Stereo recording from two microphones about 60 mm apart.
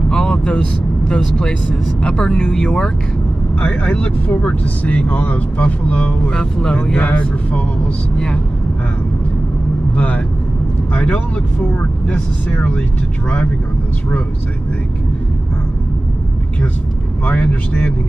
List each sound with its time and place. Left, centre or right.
0.1 s vehicle: centre
1.0 s speech: centre
3.6 s speech: left
9.9 s speech: left
17.2 s speech: left